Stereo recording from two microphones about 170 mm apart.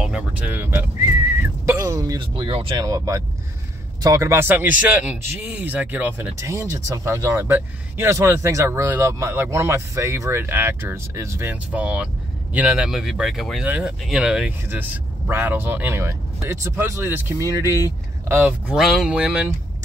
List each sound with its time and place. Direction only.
0.0 s a man's voice: 5° right (ahead or behind)
1.4 s dog: 15° right (ahead or behind)
2.7 s a man's voice: 20° right (ahead or behind)
18.7 s speech: centre (ahead or behind)